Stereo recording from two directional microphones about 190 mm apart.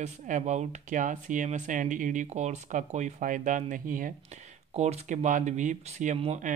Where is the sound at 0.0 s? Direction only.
40° right (ahead or behind).